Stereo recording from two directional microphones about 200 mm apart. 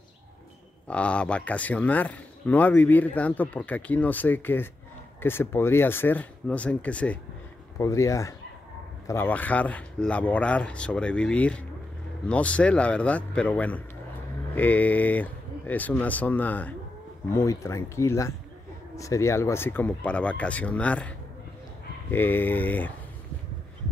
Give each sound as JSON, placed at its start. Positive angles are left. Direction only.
{"t": 0.8, "sound": "speech", "side_deg": 5}
{"t": 22.1, "sound": "speech", "side_deg": 10}